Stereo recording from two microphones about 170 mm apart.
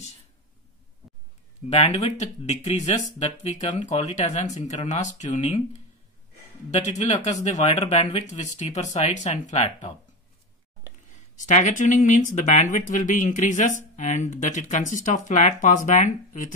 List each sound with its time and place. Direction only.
1.7 s speech: 40° left (ahead or behind)
6.7 s speech: 40° left (ahead or behind)
11.1 s speech: 45° left (ahead or behind)